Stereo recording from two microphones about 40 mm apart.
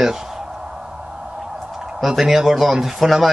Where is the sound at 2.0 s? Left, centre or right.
Centre.